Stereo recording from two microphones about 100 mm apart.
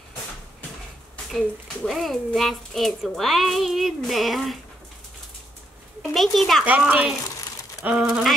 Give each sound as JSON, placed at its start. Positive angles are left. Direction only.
{"t": 1.3, "sound": "a child's voice", "side_deg": 0}
{"t": 6.1, "sound": "a child's voice", "side_deg": 0}
{"t": 6.6, "sound": "speech", "side_deg": -15}